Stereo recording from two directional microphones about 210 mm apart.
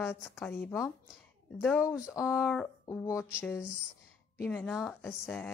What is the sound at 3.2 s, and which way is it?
Speech, 5° right (ahead or behind).